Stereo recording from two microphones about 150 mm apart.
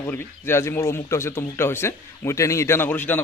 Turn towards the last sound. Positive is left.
turn(degrees=15)  # may be behind; listen again after turning